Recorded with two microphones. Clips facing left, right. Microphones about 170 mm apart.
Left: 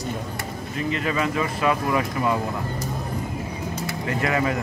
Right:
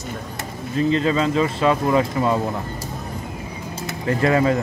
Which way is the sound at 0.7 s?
30° right (ahead or behind).